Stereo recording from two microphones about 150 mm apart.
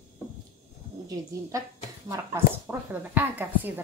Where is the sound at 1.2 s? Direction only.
25° right (ahead or behind).